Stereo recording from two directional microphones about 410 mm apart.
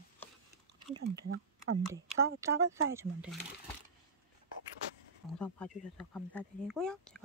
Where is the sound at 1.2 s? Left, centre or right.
Right.